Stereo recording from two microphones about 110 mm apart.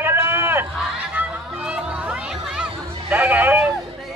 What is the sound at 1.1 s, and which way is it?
Music, 10° right (ahead or behind).